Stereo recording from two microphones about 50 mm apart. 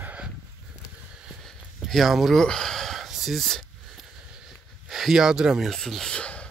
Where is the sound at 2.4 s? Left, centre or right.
Centre.